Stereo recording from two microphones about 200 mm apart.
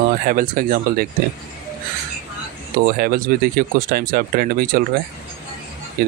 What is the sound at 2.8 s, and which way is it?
Speech, 45° right (ahead or behind).